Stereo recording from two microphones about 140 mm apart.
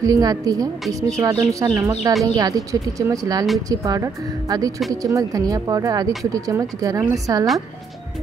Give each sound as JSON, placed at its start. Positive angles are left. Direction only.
{"t": 0.0, "sound": "speech", "side_deg": -25}